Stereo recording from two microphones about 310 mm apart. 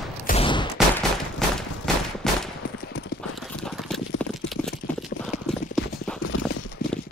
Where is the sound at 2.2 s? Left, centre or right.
Centre.